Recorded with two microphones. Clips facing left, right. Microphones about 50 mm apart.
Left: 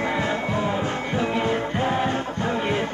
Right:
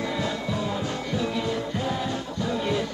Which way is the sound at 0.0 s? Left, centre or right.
Left.